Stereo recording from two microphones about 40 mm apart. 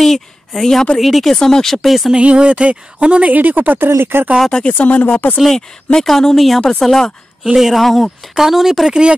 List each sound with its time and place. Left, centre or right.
0.6 s speech: centre
1.9 s speech: centre
2.1 s speech: right
3.3 s speech: right
4.5 s speech: left
4.7 s speech: left
5.9 s speech: centre
7.5 s speech: centre